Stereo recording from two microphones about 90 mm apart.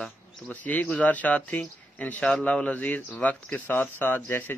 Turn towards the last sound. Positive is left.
turn(degrees=20)  # may be behind; listen again after turning